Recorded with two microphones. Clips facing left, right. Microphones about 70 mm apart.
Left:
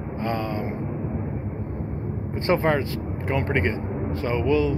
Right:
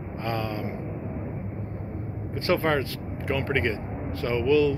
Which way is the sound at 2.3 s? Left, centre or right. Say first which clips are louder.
Left 2 dB; left.